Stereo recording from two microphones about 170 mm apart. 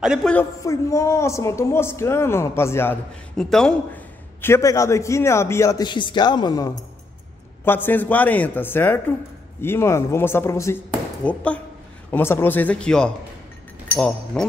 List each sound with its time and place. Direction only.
0.0 s a man's voice: 5° right (ahead or behind)
0.3 s a man's voice: 15° left (ahead or behind)
3.3 s a man's voice: 5° left (ahead or behind); by 6.8 s 20° left (ahead or behind)
7.6 s a man's voice: 10° left (ahead or behind)